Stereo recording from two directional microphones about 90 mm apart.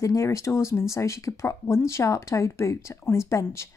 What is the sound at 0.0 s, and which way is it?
Speech, 35° left (ahead or behind).